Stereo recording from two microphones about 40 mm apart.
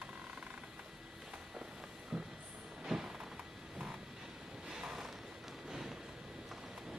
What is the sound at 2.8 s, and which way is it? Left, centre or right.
Vehicle, centre.